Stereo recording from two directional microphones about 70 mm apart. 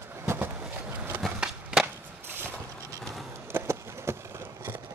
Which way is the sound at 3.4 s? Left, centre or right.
Right.